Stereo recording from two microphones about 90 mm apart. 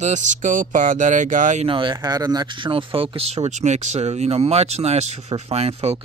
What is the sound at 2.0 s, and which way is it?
Speech, 45° right (ahead or behind).